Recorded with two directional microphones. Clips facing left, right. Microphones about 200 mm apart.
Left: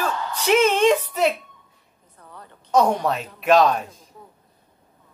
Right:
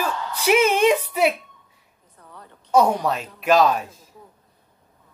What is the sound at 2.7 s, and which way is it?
Speech, centre (ahead or behind).